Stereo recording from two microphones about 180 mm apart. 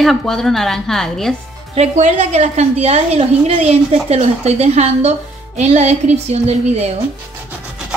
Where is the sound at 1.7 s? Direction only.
40° right (ahead or behind).